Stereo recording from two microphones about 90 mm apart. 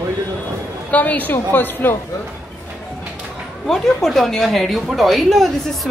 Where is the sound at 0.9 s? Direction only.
15° left (ahead or behind).